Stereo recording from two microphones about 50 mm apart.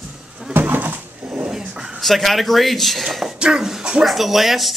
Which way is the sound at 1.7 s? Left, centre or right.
Centre.